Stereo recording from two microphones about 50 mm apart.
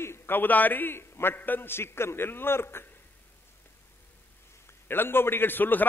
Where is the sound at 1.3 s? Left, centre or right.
Left.